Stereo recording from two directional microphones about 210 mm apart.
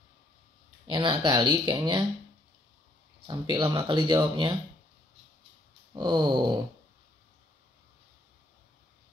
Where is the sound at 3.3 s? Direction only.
20° right (ahead or behind).